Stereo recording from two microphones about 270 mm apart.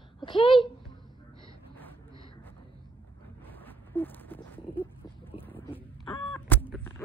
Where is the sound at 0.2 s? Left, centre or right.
Centre.